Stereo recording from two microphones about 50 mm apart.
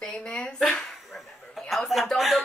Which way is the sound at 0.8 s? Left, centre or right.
Centre.